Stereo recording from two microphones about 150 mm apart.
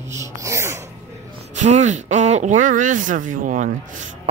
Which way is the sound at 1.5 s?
50° right (ahead or behind).